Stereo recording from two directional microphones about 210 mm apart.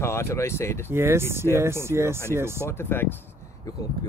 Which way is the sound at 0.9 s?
10° right (ahead or behind).